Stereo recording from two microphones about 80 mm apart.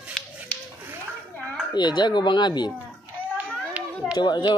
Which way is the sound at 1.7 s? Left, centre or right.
Left.